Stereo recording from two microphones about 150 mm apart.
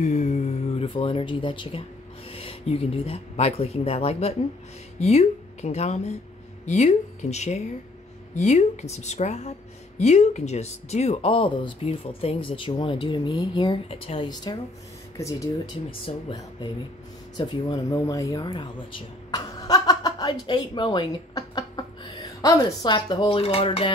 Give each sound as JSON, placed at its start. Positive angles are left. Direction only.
{"t": 0.0, "sound": "speech", "side_deg": 50}
{"t": 15.9, "sound": "speech", "side_deg": 35}
{"t": 17.4, "sound": "a woman's voice", "side_deg": 25}